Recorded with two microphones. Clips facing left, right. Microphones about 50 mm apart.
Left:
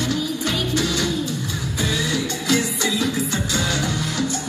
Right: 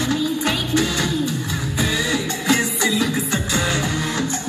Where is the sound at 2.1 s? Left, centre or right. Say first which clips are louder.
Right 2 dB; right.